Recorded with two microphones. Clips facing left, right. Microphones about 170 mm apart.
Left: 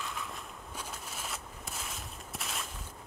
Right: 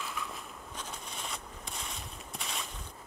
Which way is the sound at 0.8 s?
5° left (ahead or behind).